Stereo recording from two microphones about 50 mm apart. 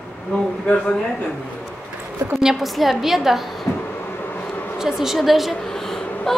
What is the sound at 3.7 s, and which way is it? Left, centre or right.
Vehicle, left.